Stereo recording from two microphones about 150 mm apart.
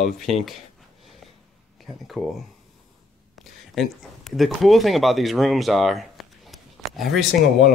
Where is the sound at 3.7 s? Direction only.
Centre (ahead or behind).